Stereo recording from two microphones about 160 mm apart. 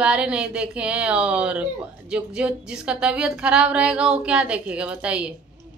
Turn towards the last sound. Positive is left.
turn(degrees=-5)  # may be behind; listen again after turning